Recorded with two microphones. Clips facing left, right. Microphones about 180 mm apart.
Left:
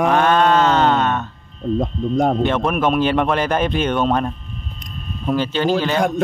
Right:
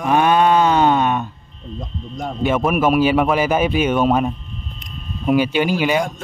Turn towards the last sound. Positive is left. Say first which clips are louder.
# even
turn(degrees=-10)  # may be behind; listen again after turning